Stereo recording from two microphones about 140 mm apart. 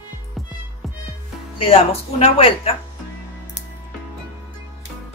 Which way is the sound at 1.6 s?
40° left (ahead or behind).